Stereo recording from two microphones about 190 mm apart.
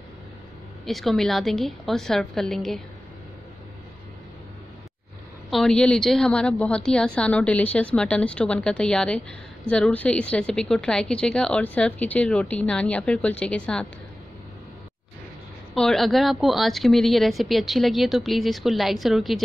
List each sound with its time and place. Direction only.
0.8 s a woman's voice: centre (ahead or behind)
5.5 s a woman's voice: 5° left (ahead or behind)
15.7 s a woman's voice: centre (ahead or behind)